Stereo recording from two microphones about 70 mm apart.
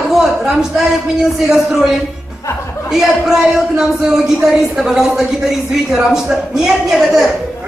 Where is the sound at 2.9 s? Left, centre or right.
Centre.